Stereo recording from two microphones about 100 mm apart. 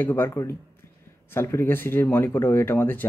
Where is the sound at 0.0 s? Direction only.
25° left (ahead or behind).